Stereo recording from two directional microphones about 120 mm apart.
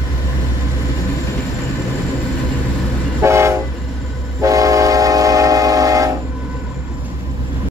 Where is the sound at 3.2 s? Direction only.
25° right (ahead or behind).